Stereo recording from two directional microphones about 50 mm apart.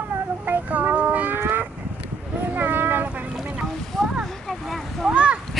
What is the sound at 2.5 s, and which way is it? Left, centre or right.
Vehicle, right.